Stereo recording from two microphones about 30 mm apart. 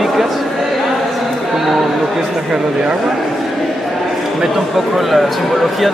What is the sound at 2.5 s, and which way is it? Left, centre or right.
Speech, right.